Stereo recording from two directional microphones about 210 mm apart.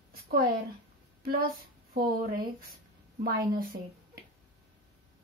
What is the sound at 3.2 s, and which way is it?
Speech, 45° right (ahead or behind).